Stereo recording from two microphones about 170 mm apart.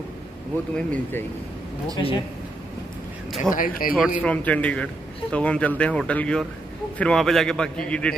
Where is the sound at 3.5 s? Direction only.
55° left (ahead or behind).